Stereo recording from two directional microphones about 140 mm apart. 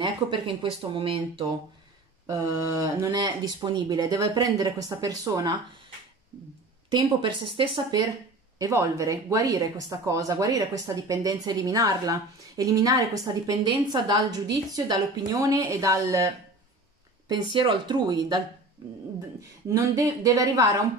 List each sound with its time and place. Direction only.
0.0 s speech: 35° right (ahead or behind)
2.2 s speech: 25° right (ahead or behind)
3.1 s speech: 30° right (ahead or behind)
7.2 s speech: 35° right (ahead or behind)
8.5 s speech: 25° right (ahead or behind)
17.3 s speech: 35° right (ahead or behind)
19.7 s speech: 25° right (ahead or behind)